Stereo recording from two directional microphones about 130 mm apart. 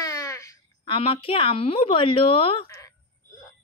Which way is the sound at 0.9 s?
45° left (ahead or behind).